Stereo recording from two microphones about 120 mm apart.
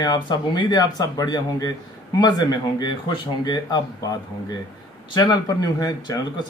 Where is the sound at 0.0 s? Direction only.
40° left (ahead or behind).